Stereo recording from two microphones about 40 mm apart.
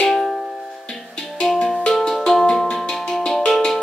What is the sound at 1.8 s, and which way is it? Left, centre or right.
Music, centre.